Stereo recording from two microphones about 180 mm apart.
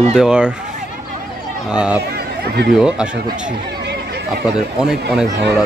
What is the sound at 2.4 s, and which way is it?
Speech, 60° right (ahead or behind).